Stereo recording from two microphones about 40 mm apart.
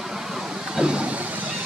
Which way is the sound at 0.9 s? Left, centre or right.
Right.